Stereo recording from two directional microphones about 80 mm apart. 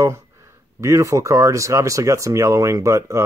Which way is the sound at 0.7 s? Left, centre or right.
Right.